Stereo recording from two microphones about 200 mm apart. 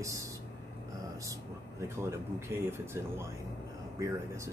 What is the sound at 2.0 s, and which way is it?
Speech, 15° right (ahead or behind).